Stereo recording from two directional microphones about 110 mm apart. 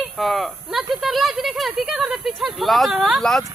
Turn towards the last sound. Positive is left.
turn(degrees=5)  # may be behind; listen again after turning